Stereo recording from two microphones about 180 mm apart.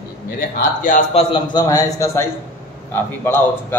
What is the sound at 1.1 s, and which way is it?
A man's voice, 25° left (ahead or behind).